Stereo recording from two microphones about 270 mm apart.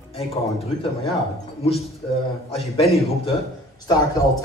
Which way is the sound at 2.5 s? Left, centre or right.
Left.